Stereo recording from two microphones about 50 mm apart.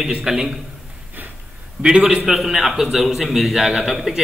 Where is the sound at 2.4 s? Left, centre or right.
Centre.